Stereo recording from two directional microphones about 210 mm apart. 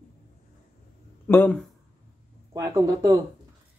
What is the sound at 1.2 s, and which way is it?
Speech, 10° left (ahead or behind).